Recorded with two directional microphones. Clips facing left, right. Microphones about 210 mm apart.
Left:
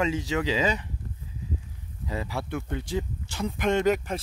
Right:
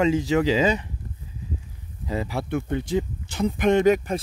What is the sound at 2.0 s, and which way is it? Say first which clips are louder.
Speech: right 4 dB; 25° right (ahead or behind).